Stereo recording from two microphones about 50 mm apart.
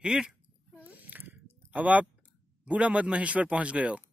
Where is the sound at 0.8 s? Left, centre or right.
Right.